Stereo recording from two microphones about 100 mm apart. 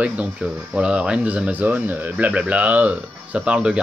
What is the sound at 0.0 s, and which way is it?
Speech, 10° right (ahead or behind).